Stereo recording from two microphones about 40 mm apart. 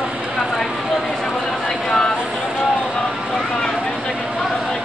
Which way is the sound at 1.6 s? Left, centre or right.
Centre.